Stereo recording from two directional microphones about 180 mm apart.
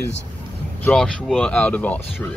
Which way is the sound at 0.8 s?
5° left (ahead or behind).